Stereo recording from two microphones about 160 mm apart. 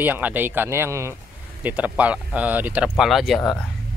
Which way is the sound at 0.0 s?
10° right (ahead or behind).